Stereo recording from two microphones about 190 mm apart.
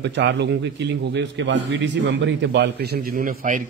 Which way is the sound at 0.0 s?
65° right (ahead or behind).